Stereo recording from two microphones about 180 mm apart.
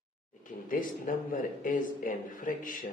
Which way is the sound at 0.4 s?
45° left (ahead or behind).